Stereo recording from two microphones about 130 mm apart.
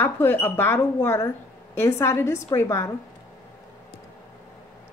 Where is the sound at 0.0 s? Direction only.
15° left (ahead or behind).